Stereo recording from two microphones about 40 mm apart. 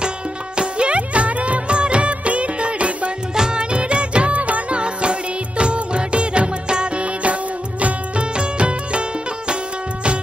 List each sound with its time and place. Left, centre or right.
0.6 s music of bollywood: right
3.3 s music: right